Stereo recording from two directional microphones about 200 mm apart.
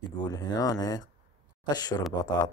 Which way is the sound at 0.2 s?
20° left (ahead or behind).